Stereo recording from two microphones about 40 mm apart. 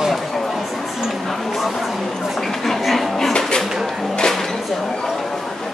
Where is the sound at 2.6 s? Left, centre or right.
Centre.